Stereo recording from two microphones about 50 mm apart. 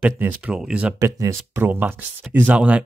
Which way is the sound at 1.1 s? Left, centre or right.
Right.